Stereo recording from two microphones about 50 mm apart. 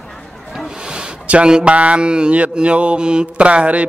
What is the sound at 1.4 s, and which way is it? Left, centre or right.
Mantra, centre.